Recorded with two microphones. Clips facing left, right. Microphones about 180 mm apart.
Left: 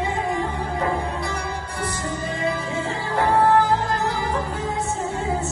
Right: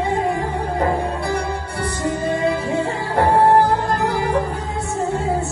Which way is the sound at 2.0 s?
60° right (ahead or behind).